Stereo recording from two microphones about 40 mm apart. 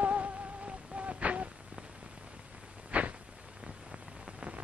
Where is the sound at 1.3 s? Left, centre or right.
Right.